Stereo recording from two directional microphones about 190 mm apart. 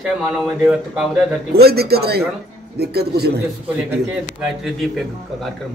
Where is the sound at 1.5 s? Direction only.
55° right (ahead or behind).